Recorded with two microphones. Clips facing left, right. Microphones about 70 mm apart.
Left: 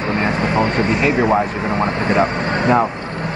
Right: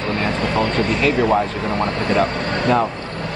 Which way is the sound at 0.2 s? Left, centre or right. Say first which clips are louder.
Left 2 dB; left.